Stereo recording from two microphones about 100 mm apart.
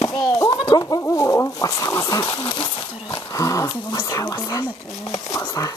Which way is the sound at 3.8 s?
45° left (ahead or behind).